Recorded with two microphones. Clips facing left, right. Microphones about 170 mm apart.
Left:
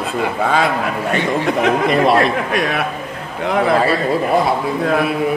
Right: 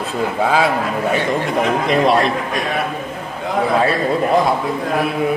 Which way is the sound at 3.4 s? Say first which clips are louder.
Left 3 dB; 70° left (ahead or behind).